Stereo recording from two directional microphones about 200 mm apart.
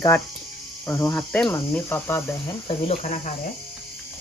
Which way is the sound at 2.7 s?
30° left (ahead or behind).